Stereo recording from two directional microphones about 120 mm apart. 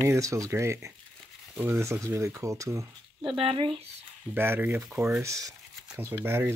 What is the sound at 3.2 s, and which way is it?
Speech, 50° right (ahead or behind).